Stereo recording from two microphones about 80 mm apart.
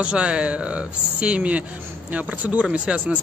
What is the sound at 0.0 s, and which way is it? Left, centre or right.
Speech, centre.